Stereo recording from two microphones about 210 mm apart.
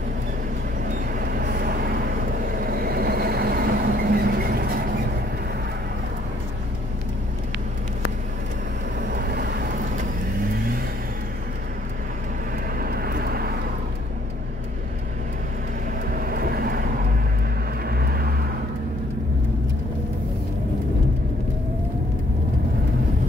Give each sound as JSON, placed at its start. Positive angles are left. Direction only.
{"t": 1.4, "sound": "vehicle", "side_deg": -45}
{"t": 9.1, "sound": "vehicle", "side_deg": -45}
{"t": 12.7, "sound": "vehicle", "side_deg": -45}
{"t": 16.2, "sound": "vehicle", "side_deg": -45}
{"t": 17.8, "sound": "vehicle", "side_deg": -45}